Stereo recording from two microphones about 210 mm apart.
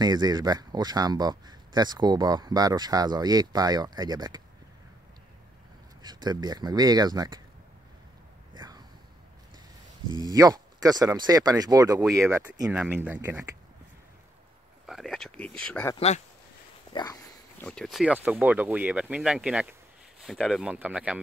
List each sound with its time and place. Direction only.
0.0 s speech: 20° right (ahead or behind)
6.0 s speech: 20° right (ahead or behind)
8.5 s a sound: 20° right (ahead or behind)
10.2 s speech: 15° right (ahead or behind)
14.9 s speech: centre (ahead or behind)
16.9 s a sound: 15° left (ahead or behind)
17.6 s speech: centre (ahead or behind)